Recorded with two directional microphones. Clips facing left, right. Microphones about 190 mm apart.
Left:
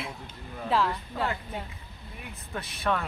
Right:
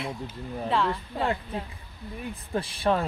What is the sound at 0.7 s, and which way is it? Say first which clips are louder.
Speech: even; centre (ahead or behind).